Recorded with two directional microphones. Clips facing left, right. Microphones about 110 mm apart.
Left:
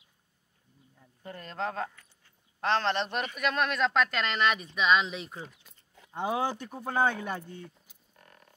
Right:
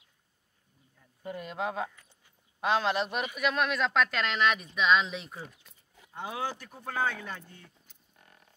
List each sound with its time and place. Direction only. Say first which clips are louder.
1.2 s speech: right 1 dB; 10° right (ahead or behind)
6.1 s speech: left 5 dB; 25° left (ahead or behind)